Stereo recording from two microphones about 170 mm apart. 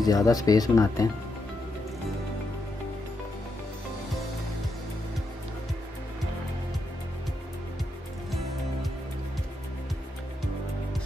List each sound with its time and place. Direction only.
0.0 s speech: 20° left (ahead or behind)